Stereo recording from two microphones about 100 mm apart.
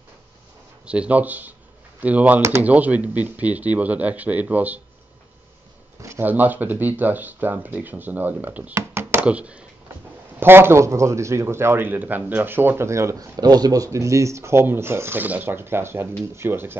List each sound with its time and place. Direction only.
0.8 s speech: 10° right (ahead or behind)
6.0 s speech: 20° right (ahead or behind)
8.7 s a sound: 25° right (ahead or behind)
9.2 s speech: 10° right (ahead or behind)
10.4 s speech: 25° right (ahead or behind)